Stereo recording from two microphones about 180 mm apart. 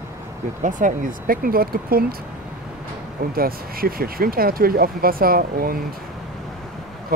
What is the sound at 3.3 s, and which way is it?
Speech, 55° right (ahead or behind).